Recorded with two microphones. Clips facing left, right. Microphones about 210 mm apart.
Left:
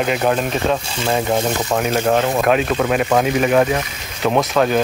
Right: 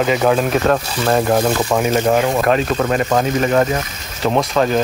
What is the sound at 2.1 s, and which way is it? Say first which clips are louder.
Speech: left 1 dB; 5° right (ahead or behind).